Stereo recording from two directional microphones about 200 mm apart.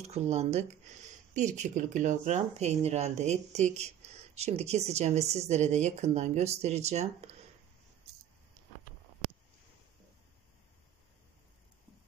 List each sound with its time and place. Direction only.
0.0 s speech: 30° right (ahead or behind)